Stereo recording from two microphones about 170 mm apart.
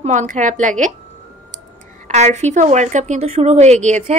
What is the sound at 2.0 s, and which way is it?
A woman's voice, 40° right (ahead or behind).